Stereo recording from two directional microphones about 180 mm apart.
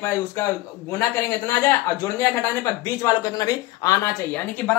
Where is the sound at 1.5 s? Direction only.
15° left (ahead or behind).